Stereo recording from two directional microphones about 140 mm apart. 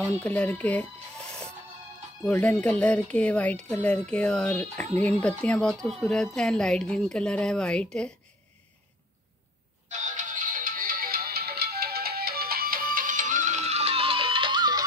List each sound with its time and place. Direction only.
0.2 s a woman's voice: 10° left (ahead or behind)
9.8 s music: 60° right (ahead or behind); by 14.8 s 30° right (ahead or behind)